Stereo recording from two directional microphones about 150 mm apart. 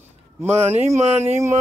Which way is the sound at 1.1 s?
15° right (ahead or behind).